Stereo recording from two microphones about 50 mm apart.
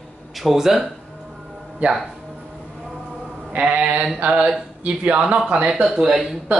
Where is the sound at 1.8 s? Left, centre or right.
Right.